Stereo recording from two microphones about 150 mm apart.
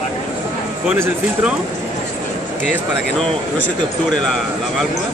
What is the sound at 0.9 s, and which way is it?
Speech, 5° right (ahead or behind).